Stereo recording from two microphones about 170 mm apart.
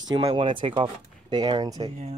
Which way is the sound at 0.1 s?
25° right (ahead or behind).